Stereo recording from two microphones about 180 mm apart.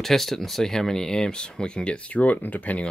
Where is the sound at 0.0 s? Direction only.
Centre (ahead or behind).